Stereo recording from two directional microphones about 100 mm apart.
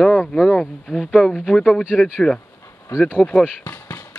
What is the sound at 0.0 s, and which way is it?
Speech, 5° left (ahead or behind).